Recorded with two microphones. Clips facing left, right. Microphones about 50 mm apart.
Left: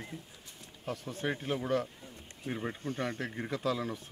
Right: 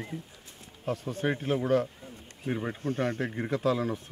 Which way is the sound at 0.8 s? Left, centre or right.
Centre.